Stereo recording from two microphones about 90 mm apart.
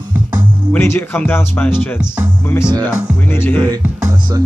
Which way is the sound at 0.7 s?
25° left (ahead or behind).